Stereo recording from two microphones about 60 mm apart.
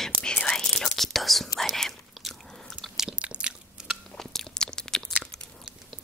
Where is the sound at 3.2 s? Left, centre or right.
Centre.